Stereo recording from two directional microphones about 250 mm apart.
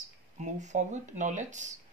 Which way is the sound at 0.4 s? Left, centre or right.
Right.